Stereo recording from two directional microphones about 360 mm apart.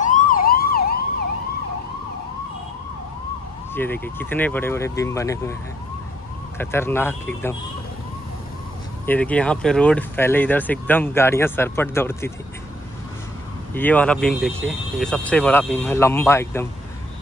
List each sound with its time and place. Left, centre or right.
0.0 s emergency vehicle: left
3.7 s speech: centre
6.6 s speech: centre
9.0 s speech: centre
13.7 s speech: centre